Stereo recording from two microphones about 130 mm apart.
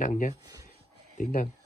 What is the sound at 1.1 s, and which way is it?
Speech, 65° left (ahead or behind).